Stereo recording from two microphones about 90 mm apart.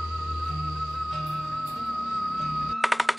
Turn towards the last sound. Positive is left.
turn(degrees=0)  # may be behind; listen again after turning